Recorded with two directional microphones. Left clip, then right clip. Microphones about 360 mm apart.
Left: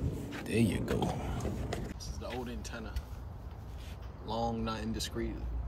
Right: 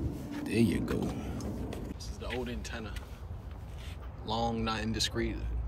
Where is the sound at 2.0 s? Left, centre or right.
Centre.